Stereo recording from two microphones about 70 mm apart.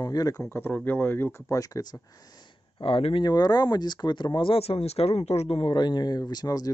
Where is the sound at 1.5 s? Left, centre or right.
Left.